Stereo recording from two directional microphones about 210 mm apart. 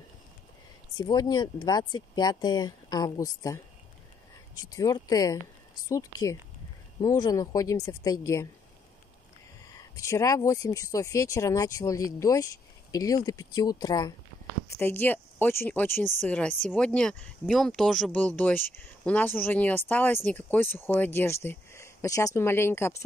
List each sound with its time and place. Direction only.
0.9 s speech: 20° left (ahead or behind)
4.7 s speech: 15° left (ahead or behind)
9.7 s speech: 15° left (ahead or behind)